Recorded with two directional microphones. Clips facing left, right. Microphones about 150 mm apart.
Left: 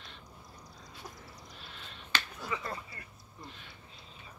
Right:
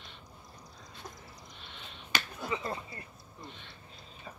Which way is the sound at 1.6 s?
Centre (ahead or behind).